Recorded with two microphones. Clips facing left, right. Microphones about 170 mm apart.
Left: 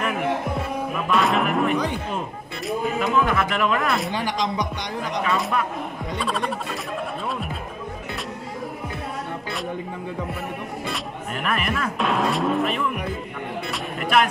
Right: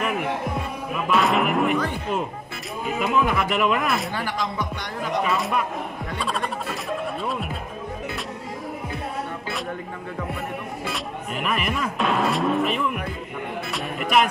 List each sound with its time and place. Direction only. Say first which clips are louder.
1.1 s music: even; centre (ahead or behind)
3.0 s speech: right 1 dB; 10° right (ahead or behind)
4.1 s speech: left 3 dB; 20° left (ahead or behind)
5.3 s speech: even; centre (ahead or behind)
10.9 s speech: even; 5° right (ahead or behind)